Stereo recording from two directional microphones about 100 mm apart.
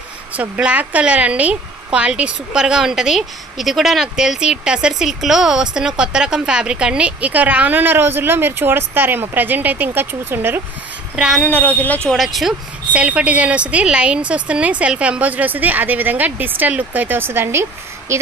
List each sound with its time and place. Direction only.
0.3 s a woman's voice: 15° right (ahead or behind)
11.1 s speech: 5° right (ahead or behind)
11.4 s speech: 15° left (ahead or behind)
12.2 s speech: centre (ahead or behind)
12.9 s a woman's voice: 10° right (ahead or behind)